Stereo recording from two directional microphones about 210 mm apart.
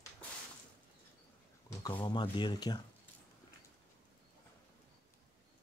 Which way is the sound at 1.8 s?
20° left (ahead or behind).